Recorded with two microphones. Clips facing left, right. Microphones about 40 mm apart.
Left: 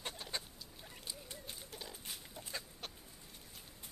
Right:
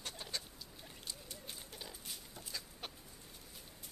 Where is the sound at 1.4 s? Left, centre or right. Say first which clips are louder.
Right 1 dB; centre.